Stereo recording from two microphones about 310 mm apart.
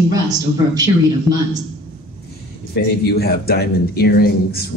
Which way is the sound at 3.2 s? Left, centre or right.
Left.